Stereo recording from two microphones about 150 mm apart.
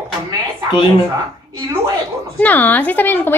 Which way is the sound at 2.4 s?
10° left (ahead or behind).